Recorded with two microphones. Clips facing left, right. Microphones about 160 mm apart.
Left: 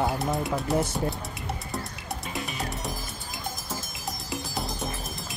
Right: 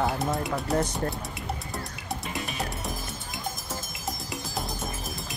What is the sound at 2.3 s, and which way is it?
Music, centre (ahead or behind).